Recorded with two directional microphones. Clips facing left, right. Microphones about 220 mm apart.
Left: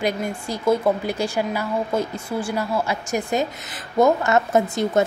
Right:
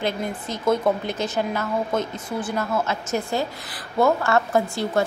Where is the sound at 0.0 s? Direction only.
10° left (ahead or behind).